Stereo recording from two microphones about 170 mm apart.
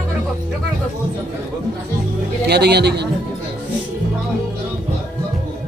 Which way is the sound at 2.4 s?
75° right (ahead or behind).